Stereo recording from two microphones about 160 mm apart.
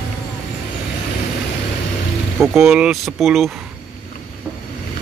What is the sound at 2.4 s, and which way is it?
Speech, centre (ahead or behind).